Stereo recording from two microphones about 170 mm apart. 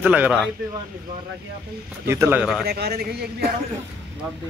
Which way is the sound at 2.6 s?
70° right (ahead or behind).